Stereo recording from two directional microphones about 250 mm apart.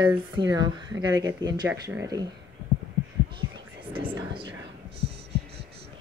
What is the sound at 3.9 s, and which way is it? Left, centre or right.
Speech, centre.